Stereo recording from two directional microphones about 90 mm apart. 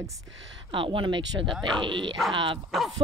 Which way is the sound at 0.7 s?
70° right (ahead or behind).